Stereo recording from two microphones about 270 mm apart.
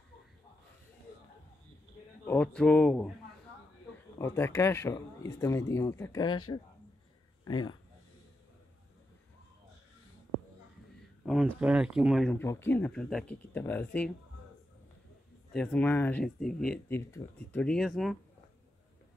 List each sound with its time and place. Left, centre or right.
2.2 s speech: centre
4.2 s speech: centre
7.4 s speech: centre
11.2 s speech: centre
15.5 s speech: centre